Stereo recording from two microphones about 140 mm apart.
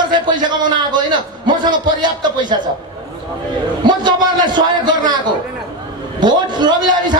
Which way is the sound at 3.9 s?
30° right (ahead or behind).